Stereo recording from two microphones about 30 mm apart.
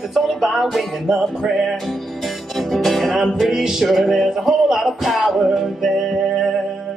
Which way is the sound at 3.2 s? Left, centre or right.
Centre.